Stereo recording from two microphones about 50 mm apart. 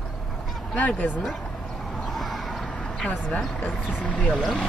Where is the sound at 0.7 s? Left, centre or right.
Left.